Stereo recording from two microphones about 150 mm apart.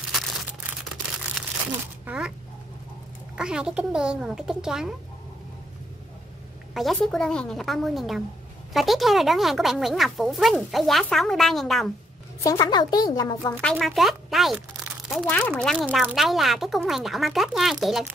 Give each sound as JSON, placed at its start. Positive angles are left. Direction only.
{"t": 2.0, "sound": "speech", "side_deg": -5}
{"t": 3.3, "sound": "speech", "side_deg": -5}
{"t": 6.7, "sound": "speech", "side_deg": 0}
{"t": 12.4, "sound": "a woman's voice", "side_deg": 25}
{"t": 13.6, "sound": "speech", "side_deg": 5}
{"t": 15.2, "sound": "speech", "side_deg": 10}